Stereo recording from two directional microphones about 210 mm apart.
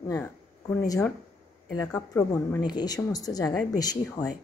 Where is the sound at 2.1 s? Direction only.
15° left (ahead or behind).